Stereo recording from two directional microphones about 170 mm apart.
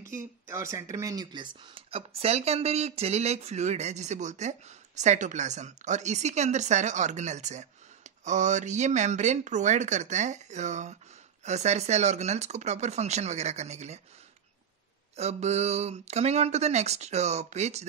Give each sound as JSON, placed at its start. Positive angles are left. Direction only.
{"t": 0.1, "sound": "speech", "side_deg": -15}
{"t": 15.1, "sound": "speech", "side_deg": -40}